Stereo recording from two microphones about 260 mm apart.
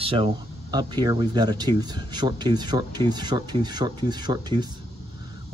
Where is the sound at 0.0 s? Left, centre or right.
Right.